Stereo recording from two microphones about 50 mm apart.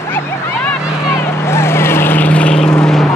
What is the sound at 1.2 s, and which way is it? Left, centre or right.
Vehicle, left.